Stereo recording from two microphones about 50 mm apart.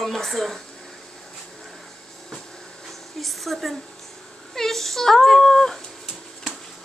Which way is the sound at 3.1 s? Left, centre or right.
Centre.